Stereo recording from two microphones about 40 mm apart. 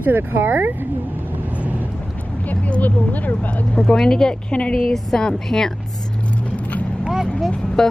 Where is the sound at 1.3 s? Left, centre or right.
Right.